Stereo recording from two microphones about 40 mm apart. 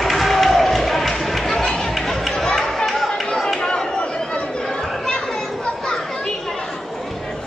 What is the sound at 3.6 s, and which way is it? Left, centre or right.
Chatter, centre.